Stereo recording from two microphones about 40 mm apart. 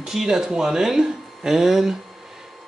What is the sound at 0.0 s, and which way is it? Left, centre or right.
Speech, centre.